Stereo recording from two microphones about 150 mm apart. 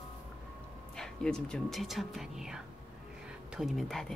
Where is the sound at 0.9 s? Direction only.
5° left (ahead or behind).